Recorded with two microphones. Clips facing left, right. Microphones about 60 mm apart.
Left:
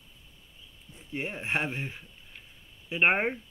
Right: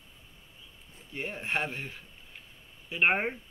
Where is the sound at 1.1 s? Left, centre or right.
Centre.